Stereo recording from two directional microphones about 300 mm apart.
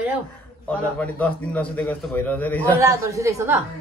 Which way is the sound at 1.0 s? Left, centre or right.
Centre.